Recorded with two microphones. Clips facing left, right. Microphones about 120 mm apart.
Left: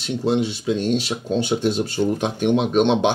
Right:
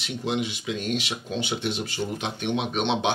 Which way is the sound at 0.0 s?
35° left (ahead or behind).